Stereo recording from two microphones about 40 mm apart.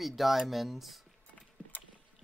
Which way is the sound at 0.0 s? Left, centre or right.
Centre.